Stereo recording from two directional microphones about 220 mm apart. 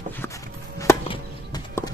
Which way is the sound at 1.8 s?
10° left (ahead or behind).